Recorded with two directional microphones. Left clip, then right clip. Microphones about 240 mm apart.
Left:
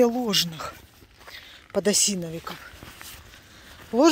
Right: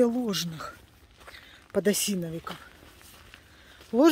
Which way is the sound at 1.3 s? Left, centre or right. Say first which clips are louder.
Left 2 dB; centre.